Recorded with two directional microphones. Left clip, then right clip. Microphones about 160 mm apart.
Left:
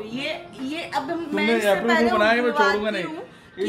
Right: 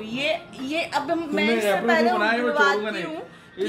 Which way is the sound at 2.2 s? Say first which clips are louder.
Left 3 dB; 55° left (ahead or behind).